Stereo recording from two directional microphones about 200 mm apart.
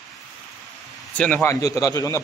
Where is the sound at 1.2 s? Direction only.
10° left (ahead or behind).